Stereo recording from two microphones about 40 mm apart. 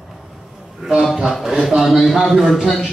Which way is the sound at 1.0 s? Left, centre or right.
Centre.